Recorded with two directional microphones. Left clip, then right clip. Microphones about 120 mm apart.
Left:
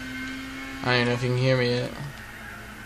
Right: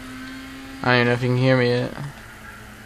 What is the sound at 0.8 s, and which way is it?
Speech, 55° right (ahead or behind).